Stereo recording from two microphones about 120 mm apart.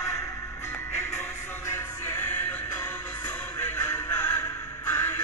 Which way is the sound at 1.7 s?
20° left (ahead or behind).